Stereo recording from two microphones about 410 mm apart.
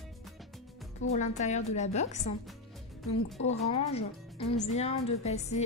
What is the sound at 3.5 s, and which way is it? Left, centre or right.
Speech, centre.